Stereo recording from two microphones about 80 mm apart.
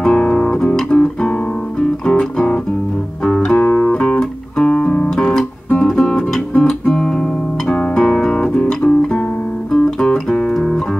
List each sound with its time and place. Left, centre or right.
0.0 s music: centre
3.5 s music: centre